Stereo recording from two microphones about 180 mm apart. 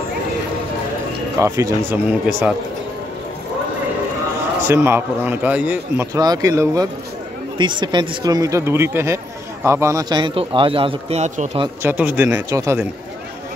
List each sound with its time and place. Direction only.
1.4 s a man's voice: 15° right (ahead or behind)
4.6 s a man's voice: 15° right (ahead or behind)
6.1 s speech: 20° right (ahead or behind); by 11.6 s 40° right (ahead or behind)
11.8 s a man's voice: 10° right (ahead or behind)